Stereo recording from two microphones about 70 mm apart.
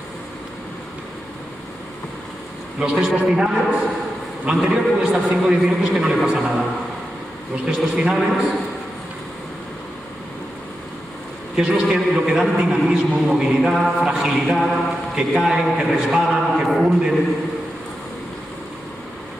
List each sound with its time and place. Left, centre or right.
2.8 s a man's voice: centre
7.6 s a man's voice: centre
11.5 s a man's voice: centre